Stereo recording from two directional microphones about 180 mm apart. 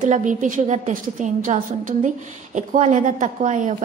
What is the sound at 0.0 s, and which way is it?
A woman's voice, 45° right (ahead or behind).